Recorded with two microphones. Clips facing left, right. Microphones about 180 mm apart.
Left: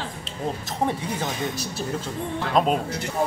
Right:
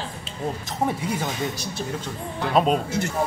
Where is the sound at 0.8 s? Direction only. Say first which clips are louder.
Right 1 dB; 10° right (ahead or behind).